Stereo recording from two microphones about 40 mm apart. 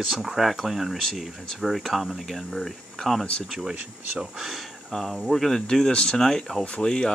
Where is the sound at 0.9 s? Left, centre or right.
Centre.